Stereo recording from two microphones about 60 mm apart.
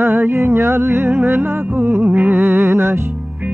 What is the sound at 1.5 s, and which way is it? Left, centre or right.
Music, right.